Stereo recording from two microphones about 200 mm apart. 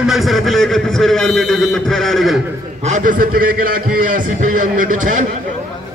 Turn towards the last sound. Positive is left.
turn(degrees=-40)  # may be behind; listen again after turning